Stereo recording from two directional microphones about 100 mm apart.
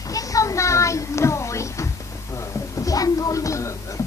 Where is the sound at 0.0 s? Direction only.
35° left (ahead or behind).